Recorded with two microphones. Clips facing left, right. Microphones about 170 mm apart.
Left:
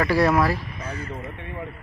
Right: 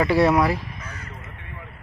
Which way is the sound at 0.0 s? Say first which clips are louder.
Right 1 dB; 20° right (ahead or behind).